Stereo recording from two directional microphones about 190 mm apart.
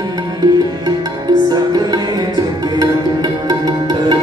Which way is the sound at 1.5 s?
20° right (ahead or behind).